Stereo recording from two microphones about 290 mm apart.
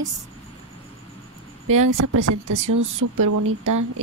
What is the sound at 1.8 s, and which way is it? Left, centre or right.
Speech, right.